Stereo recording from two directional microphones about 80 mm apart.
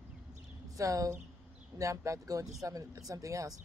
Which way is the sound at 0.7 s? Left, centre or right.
Right.